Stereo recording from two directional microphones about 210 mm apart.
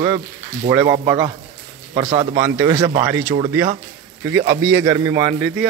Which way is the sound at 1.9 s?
25° right (ahead or behind).